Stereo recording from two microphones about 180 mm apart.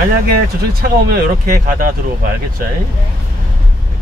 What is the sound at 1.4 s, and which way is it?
Speech, 50° right (ahead or behind).